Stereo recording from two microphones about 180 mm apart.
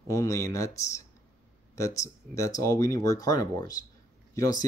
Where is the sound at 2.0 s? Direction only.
15° left (ahead or behind).